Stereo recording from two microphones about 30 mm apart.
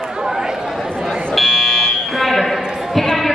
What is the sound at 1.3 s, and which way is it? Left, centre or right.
Buzzer, centre.